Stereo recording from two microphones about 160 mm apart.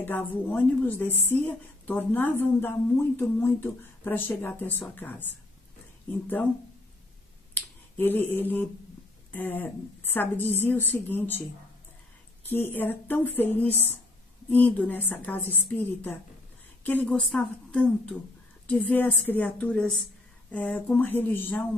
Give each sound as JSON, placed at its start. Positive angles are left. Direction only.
{"t": 0.0, "sound": "a woman's voice", "side_deg": 10}
{"t": 7.5, "sound": "finger snapping", "side_deg": 10}
{"t": 9.3, "sound": "a woman's voice", "side_deg": 10}
{"t": 12.4, "sound": "a woman's voice", "side_deg": 15}